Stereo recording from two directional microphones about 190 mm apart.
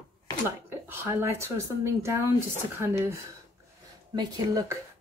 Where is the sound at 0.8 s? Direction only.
10° right (ahead or behind).